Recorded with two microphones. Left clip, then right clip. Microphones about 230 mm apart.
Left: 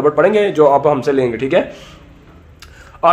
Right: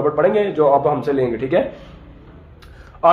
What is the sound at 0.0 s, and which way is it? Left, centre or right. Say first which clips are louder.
A man's voice: left 4 dB; left.